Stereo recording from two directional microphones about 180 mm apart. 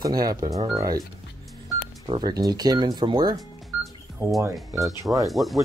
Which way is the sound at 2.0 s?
25° right (ahead or behind).